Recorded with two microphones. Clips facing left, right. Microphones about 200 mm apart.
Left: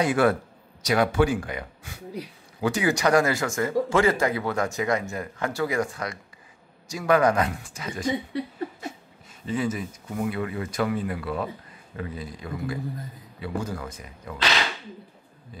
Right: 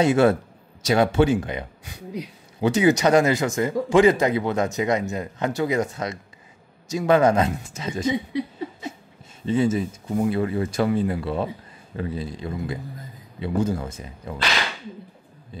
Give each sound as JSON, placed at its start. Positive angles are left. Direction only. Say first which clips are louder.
{"t": 0.0, "sound": "speech", "louder": "right 4 dB", "side_deg": -25}
{"t": 9.5, "sound": "speech", "louder": "right 6 dB", "side_deg": -25}